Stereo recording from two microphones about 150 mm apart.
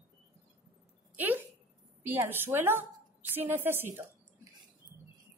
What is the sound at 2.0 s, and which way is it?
A woman's voice, 15° right (ahead or behind).